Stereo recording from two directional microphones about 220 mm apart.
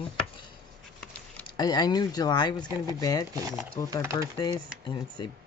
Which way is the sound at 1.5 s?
20° left (ahead or behind).